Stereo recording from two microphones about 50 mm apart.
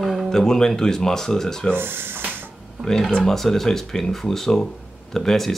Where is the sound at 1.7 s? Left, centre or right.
Right.